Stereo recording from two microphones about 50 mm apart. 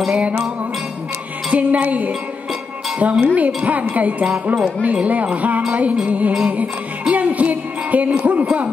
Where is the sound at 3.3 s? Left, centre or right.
Right.